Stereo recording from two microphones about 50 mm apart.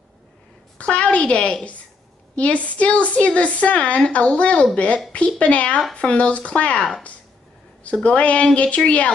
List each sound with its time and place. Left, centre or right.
0.7 s a woman's voice: left